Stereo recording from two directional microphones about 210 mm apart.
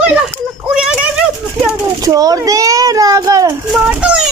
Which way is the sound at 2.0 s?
15° right (ahead or behind).